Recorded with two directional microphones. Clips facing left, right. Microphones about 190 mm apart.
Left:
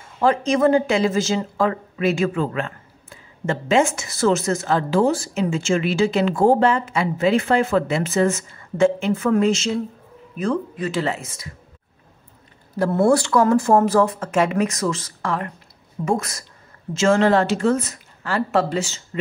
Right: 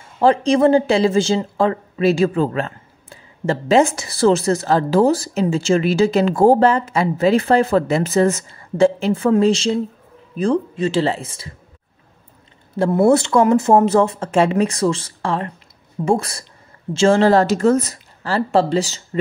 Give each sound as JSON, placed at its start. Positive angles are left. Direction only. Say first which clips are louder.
{"t": 0.2, "sound": "speech", "louder": "right 4 dB", "side_deg": -30}
{"t": 12.7, "sound": "speech", "louder": "right 3 dB", "side_deg": -25}